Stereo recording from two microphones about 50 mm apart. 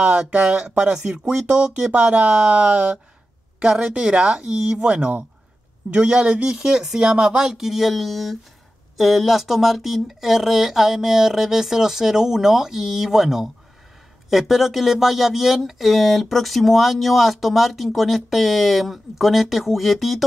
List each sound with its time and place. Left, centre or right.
0.0 s speech: right
14.5 s speech: centre